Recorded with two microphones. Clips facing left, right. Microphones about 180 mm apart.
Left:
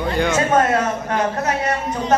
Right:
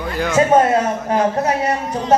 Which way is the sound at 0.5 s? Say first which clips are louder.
Right 3 dB; 30° right (ahead or behind).